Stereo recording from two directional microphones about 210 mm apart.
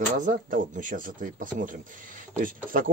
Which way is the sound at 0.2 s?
40° right (ahead or behind).